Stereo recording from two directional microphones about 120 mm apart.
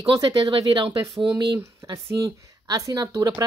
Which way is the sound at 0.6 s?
45° right (ahead or behind).